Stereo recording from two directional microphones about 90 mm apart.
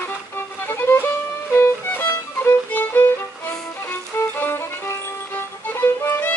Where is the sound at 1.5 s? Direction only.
25° left (ahead or behind).